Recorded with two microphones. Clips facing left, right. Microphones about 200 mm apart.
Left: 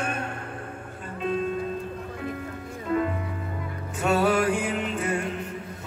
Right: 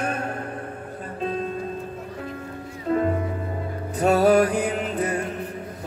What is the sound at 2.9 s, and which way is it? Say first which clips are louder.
Music: right 3 dB; 40° right (ahead or behind).